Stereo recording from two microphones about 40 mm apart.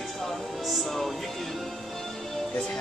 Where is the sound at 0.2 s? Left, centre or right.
Centre.